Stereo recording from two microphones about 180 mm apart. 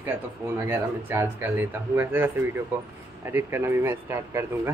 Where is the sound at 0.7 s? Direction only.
10° right (ahead or behind).